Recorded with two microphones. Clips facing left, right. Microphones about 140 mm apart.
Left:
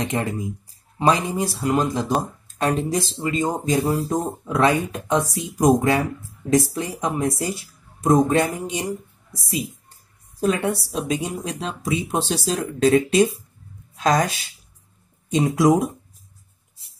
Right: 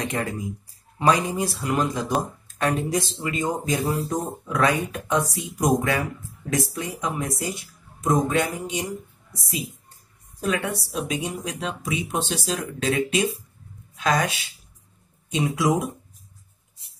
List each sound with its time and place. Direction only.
0.0 s speech: 25° left (ahead or behind)